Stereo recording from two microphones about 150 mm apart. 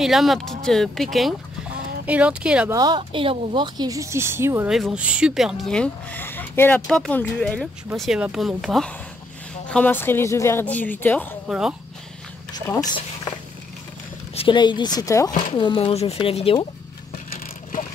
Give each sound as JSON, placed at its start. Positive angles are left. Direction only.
{"t": 0.0, "sound": "speech", "side_deg": 0}
{"t": 2.7, "sound": "speech", "side_deg": -25}
{"t": 4.6, "sound": "speech", "side_deg": 0}
{"t": 11.4, "sound": "speech", "side_deg": -5}
{"t": 14.3, "sound": "speech", "side_deg": 35}
{"t": 15.5, "sound": "speech", "side_deg": 35}